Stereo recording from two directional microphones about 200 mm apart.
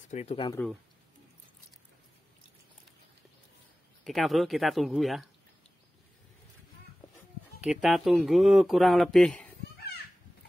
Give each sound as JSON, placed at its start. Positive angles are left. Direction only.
{"t": 0.1, "sound": "speech", "side_deg": 30}
{"t": 4.0, "sound": "speech", "side_deg": 0}
{"t": 7.6, "sound": "speech", "side_deg": -5}